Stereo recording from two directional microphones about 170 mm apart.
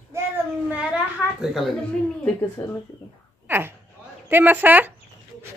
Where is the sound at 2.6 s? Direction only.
10° left (ahead or behind).